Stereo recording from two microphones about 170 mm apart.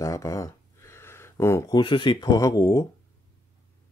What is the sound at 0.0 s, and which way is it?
Speech, 20° left (ahead or behind).